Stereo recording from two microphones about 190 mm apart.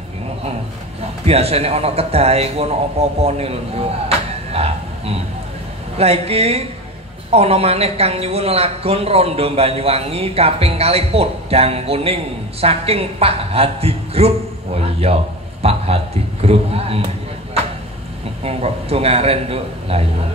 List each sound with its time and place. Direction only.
1.2 s a woman's voice: 30° right (ahead or behind)
4.3 s a sound: 30° right (ahead or behind)
5.9 s a woman's voice: 30° right (ahead or behind)
18.4 s a woman's voice: 30° right (ahead or behind)